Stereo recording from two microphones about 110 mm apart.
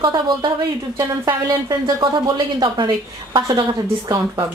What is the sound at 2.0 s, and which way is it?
Speech, 45° right (ahead or behind).